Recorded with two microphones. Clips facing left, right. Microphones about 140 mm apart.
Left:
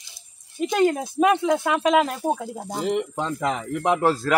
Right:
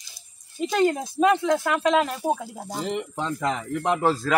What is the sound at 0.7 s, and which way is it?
Speech, 10° left (ahead or behind).